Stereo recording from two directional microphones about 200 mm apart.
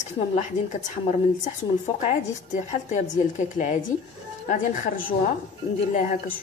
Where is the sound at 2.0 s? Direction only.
35° left (ahead or behind).